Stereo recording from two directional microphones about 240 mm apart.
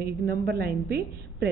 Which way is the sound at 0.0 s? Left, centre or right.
Right.